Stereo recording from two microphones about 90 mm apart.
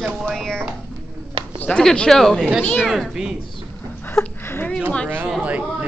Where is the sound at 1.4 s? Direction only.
65° right (ahead or behind).